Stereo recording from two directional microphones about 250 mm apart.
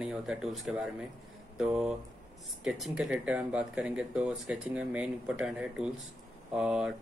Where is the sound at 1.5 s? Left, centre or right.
Centre.